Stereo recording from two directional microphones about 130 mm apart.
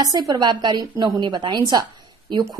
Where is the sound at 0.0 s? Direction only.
30° right (ahead or behind).